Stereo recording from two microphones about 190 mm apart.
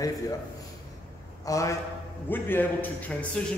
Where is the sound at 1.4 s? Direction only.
15° left (ahead or behind).